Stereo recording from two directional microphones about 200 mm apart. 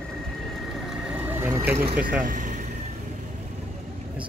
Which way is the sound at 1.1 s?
10° right (ahead or behind).